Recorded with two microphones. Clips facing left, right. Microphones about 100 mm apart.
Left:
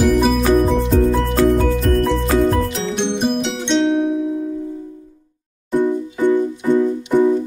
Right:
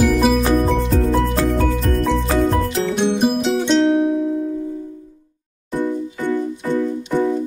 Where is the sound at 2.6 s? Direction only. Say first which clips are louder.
Right 1 dB; centre (ahead or behind).